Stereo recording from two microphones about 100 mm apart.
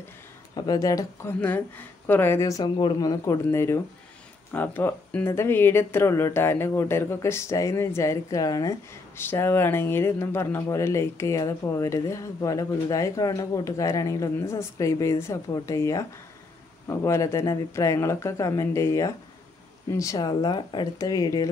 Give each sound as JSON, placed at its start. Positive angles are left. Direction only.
{"t": 0.6, "sound": "speech", "side_deg": 40}
{"t": 1.4, "sound": "speech", "side_deg": 20}
{"t": 2.6, "sound": "speech", "side_deg": 45}
{"t": 3.5, "sound": "speech", "side_deg": 25}
{"t": 9.1, "sound": "speech", "side_deg": 25}